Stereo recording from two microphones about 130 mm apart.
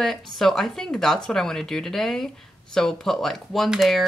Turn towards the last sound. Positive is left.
turn(degrees=0)  # may be behind; listen again after turning